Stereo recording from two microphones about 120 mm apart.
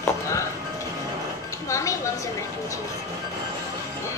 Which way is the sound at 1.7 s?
25° left (ahead or behind).